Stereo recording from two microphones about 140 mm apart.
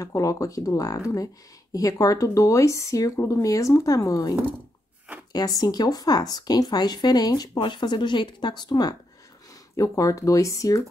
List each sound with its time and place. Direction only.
0.0 s speech: 25° left (ahead or behind)